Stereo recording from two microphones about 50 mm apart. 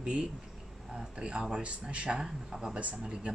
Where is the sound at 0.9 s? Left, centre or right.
Centre.